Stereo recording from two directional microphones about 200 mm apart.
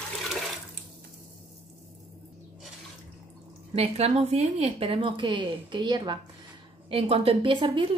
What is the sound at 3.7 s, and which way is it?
Speech, 30° right (ahead or behind).